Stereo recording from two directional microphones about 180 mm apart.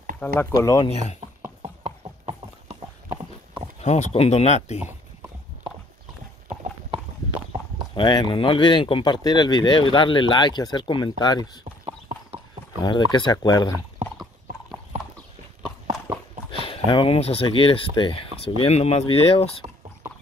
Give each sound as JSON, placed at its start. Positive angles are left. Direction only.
{"t": 0.2, "sound": "speech", "side_deg": 15}
{"t": 1.6, "sound": "clip-clop", "side_deg": -30}
{"t": 3.8, "sound": "speech", "side_deg": 40}
{"t": 7.9, "sound": "speech", "side_deg": 25}
{"t": 12.8, "sound": "speech", "side_deg": 25}
{"t": 16.6, "sound": "speech", "side_deg": 30}